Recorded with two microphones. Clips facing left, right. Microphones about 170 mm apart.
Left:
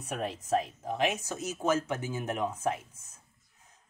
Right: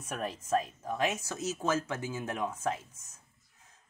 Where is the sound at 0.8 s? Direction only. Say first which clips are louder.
Left 2 dB; 15° left (ahead or behind).